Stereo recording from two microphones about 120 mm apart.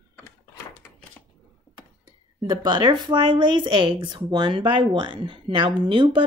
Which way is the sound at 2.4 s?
40° right (ahead or behind).